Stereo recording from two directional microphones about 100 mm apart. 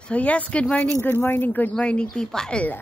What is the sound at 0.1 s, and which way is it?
Speech, 15° left (ahead or behind).